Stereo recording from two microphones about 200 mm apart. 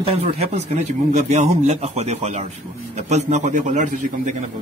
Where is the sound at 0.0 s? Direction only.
30° right (ahead or behind).